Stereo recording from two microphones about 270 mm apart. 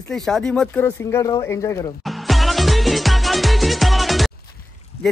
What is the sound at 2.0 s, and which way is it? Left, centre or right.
Music, centre.